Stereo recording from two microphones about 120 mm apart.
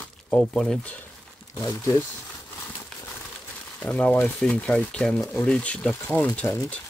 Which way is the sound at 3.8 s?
10° left (ahead or behind).